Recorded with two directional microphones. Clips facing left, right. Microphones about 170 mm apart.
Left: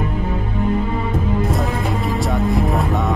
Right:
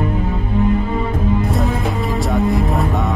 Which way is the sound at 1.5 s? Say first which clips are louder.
Right 1 dB; centre (ahead or behind).